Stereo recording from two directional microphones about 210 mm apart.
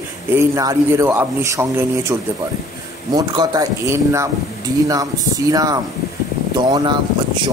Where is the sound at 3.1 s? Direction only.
20° right (ahead or behind).